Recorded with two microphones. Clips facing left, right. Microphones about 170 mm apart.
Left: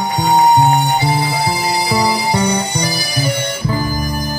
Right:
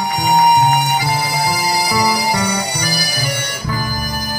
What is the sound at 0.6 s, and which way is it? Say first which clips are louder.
Music: left 2 dB; 30° left (ahead or behind).